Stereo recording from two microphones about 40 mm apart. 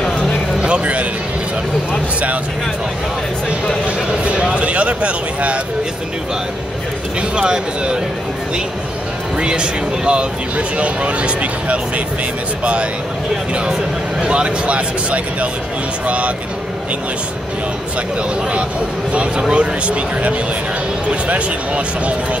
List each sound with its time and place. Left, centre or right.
0.7 s a sound: right
4.2 s a sound: right
7.2 s speech: right
9.4 s speech: right
14.2 s speech: right
19.5 s speech: right